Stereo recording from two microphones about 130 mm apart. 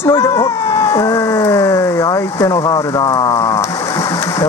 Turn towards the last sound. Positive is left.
turn(degrees=25)  # may be behind; listen again after turning